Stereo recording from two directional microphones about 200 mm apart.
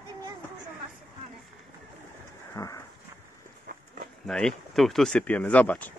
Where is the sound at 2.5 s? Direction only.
15° left (ahead or behind).